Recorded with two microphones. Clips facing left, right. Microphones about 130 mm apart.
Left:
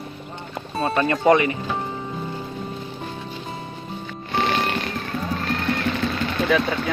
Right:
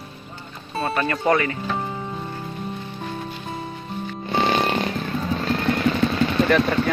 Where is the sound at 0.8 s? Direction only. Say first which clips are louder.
Left 4 dB; 25° left (ahead or behind).